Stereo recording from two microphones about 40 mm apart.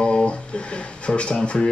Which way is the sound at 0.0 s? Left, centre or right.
Centre.